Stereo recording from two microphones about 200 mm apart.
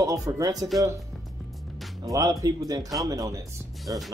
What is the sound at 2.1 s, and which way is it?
Speech, 20° right (ahead or behind).